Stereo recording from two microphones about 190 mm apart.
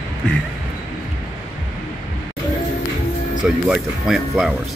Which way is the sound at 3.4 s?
Centre (ahead or behind).